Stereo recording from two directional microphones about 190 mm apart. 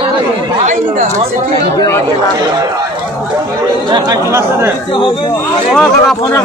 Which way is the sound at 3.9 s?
20° right (ahead or behind).